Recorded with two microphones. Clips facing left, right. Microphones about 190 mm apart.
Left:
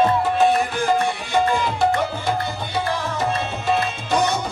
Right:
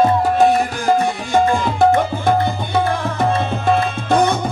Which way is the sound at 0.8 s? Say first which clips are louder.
Right 3 dB; 45° right (ahead or behind).